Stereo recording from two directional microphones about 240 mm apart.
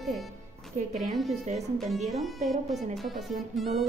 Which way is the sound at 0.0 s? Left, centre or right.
Centre.